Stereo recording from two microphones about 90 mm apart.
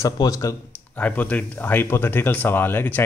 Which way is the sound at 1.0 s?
15° left (ahead or behind).